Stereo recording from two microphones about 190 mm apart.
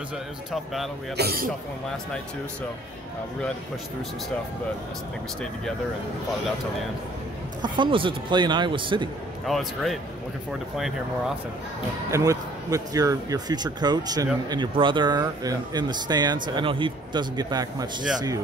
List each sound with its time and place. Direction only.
1.1 s speech: 55° right (ahead or behind)
7.6 s a man's voice: 25° right (ahead or behind)
9.5 s speech: centre (ahead or behind)
12.1 s a man's voice: 20° right (ahead or behind)